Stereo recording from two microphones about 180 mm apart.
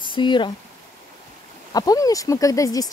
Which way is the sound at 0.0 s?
25° left (ahead or behind).